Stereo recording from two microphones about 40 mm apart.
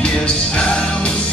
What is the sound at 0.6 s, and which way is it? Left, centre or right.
Music, left.